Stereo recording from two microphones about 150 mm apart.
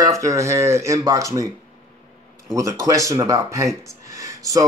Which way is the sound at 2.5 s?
20° right (ahead or behind).